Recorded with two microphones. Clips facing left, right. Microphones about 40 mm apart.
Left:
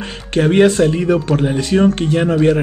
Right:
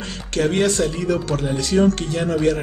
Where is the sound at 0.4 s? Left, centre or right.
Left.